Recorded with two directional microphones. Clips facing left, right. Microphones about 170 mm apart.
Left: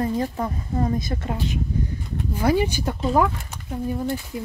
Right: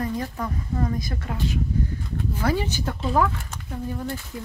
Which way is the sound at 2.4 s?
15° left (ahead or behind).